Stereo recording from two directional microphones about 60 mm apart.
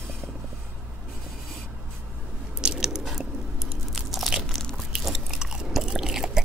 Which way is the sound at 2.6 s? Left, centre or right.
Centre.